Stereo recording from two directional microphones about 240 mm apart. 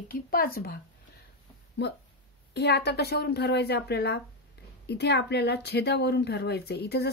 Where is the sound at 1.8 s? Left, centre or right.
Left.